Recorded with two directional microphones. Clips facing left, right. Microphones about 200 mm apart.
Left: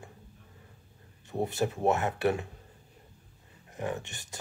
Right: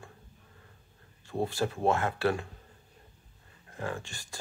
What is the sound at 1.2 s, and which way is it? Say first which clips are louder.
Speech: left 1 dB; 20° left (ahead or behind).